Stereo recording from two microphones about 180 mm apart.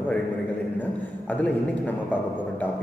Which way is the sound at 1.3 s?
10° left (ahead or behind).